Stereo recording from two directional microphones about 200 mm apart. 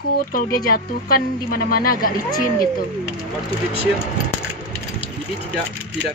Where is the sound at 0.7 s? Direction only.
45° left (ahead or behind).